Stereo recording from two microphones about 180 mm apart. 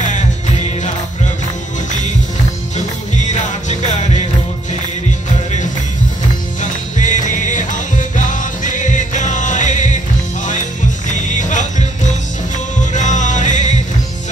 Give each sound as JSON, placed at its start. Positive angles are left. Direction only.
{"t": 3.2, "sound": "music", "side_deg": 40}
{"t": 6.6, "sound": "music", "side_deg": 45}
{"t": 11.1, "sound": "music", "side_deg": 45}